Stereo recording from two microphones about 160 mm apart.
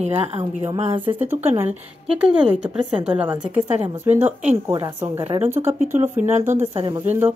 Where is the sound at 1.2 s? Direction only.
15° right (ahead or behind).